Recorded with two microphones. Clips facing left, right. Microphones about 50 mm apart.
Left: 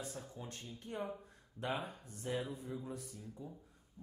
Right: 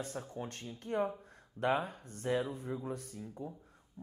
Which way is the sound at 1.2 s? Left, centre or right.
Right.